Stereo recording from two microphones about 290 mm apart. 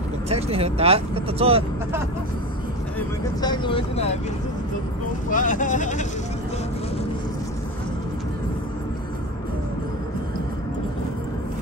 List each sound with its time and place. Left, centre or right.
0.3 s speech: right
3.0 s speech: centre
5.3 s speech: left